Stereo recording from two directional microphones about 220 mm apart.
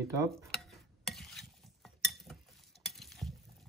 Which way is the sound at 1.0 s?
Centre (ahead or behind).